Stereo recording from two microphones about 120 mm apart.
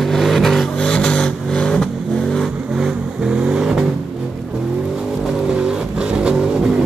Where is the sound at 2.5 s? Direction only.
5° right (ahead or behind).